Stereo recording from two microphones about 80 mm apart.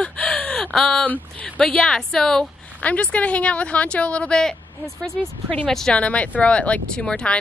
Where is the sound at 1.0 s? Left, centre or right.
Left.